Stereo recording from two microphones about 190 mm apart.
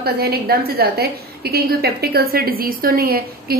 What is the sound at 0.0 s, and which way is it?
A woman's voice, 55° right (ahead or behind).